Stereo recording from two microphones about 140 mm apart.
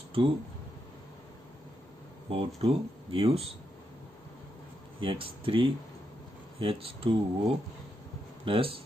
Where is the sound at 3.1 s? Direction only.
45° right (ahead or behind).